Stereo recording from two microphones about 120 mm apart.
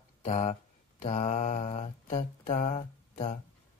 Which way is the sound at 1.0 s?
90° left.